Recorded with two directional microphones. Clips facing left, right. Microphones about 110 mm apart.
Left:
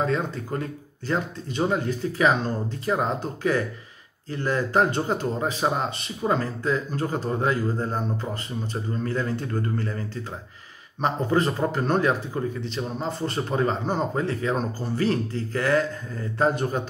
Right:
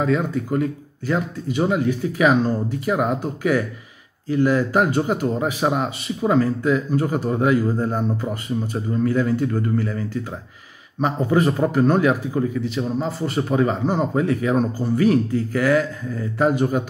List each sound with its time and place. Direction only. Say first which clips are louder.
1.0 s a man's voice: right 4 dB; 10° right (ahead or behind)
11.1 s a man's voice: right 3 dB; 10° right (ahead or behind)